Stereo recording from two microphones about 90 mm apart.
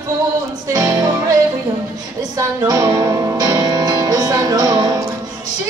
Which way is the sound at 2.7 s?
45° right (ahead or behind).